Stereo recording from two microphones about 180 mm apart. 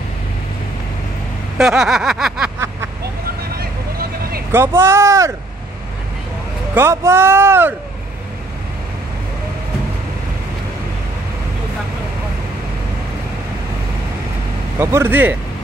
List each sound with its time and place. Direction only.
1.6 s snicker: 5° right (ahead or behind)
3.5 s vehicle: 55° right (ahead or behind)
4.5 s speech: 15° right (ahead or behind)
6.7 s speech: 15° right (ahead or behind)
14.8 s speech: 15° right (ahead or behind)